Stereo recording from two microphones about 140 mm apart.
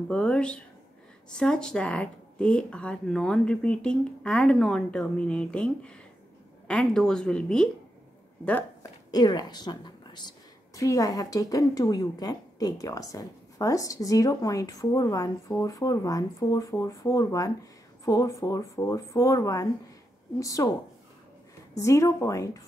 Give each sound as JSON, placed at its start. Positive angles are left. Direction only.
{"t": 0.1, "sound": "a woman's voice", "side_deg": 5}
{"t": 9.1, "sound": "a woman's voice", "side_deg": 30}
{"t": 21.7, "sound": "a woman's voice", "side_deg": 20}